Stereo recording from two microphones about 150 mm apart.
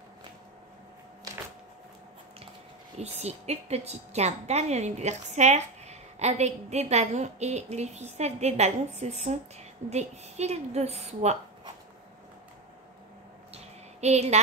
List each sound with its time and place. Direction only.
3.0 s a woman's voice: 45° right (ahead or behind)
14.0 s a woman's voice: 45° right (ahead or behind)